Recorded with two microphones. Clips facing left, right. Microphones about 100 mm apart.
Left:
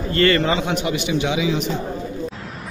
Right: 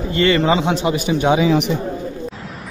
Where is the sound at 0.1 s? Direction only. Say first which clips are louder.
Right 2 dB; 20° right (ahead or behind); by 1.6 s 45° right (ahead or behind).